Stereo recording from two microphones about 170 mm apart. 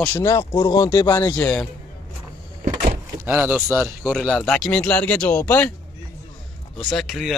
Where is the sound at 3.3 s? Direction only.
10° right (ahead or behind).